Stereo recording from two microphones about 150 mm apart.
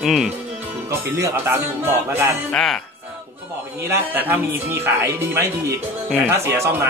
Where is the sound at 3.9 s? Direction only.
15° right (ahead or behind).